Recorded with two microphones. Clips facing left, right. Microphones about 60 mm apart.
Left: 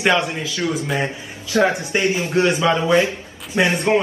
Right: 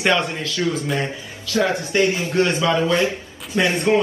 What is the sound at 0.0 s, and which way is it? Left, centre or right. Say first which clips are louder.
Speech: left 1 dB; centre.